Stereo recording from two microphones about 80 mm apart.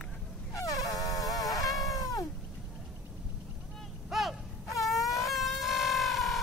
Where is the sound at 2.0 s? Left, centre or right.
Left.